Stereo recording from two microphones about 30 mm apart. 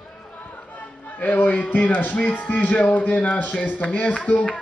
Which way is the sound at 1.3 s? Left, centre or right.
Left.